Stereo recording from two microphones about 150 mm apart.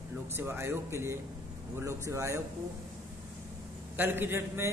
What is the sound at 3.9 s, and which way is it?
Speech, 15° right (ahead or behind).